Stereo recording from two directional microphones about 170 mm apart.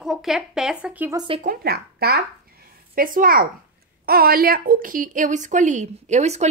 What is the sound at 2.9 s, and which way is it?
A woman's voice, 55° right (ahead or behind).